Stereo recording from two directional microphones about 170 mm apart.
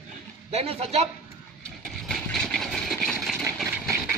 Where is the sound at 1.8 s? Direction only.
Centre (ahead or behind).